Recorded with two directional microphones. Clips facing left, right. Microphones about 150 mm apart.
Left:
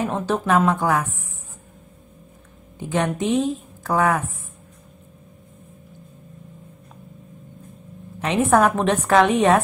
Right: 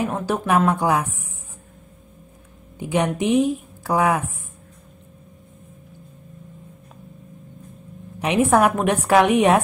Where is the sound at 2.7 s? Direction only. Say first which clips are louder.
Right 1 dB; 15° right (ahead or behind).